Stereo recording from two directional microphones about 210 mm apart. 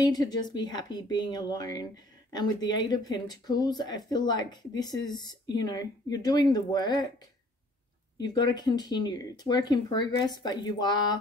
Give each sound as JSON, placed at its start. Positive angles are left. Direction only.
{"t": 0.0, "sound": "speech", "side_deg": 20}
{"t": 8.3, "sound": "speech", "side_deg": 20}